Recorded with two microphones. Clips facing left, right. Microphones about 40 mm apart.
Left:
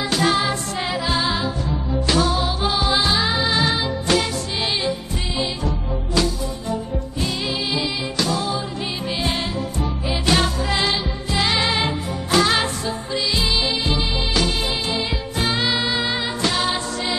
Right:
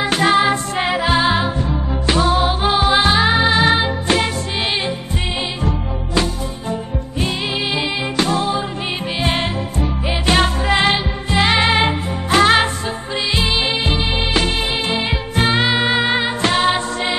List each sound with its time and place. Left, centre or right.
0.0 s music: right
6.7 s music: right